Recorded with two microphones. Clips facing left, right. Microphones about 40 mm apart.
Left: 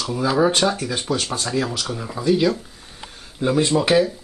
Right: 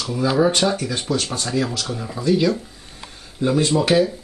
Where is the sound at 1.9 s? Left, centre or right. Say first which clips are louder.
Left 1 dB; centre.